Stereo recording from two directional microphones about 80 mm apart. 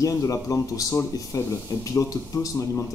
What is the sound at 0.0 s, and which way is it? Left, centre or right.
A man's voice, left.